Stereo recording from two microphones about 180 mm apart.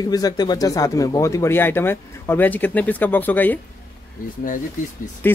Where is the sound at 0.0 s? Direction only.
20° left (ahead or behind).